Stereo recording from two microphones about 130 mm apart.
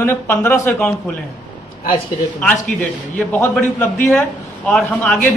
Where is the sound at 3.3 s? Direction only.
10° left (ahead or behind).